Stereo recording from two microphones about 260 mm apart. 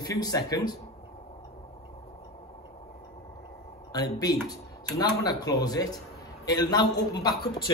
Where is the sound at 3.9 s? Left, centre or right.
Centre.